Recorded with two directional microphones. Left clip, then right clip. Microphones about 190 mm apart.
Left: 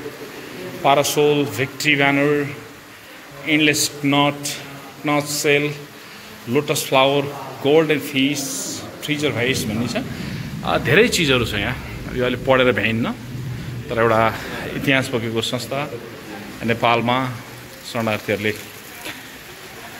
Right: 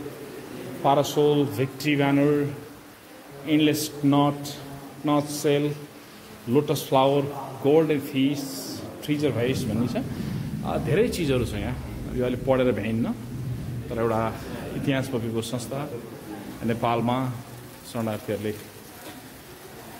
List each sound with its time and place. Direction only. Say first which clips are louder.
0.8 s speech: left 5 dB; 15° right (ahead or behind)
3.4 s a man's voice: left 6 dB; 20° right (ahead or behind)
10.7 s a man's voice: left 9 dB; 5° left (ahead or behind)
13.9 s a man's voice: left 9 dB; 10° left (ahead or behind)
17.9 s speech: left 8 dB; 10° left (ahead or behind)